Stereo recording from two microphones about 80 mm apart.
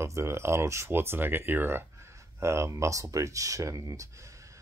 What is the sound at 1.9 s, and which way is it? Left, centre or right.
Speech, right.